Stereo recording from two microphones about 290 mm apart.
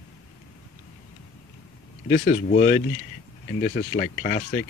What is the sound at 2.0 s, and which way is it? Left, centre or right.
Speech, left.